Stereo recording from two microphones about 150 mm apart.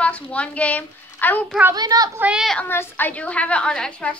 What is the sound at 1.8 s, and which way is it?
Speech, 25° right (ahead or behind).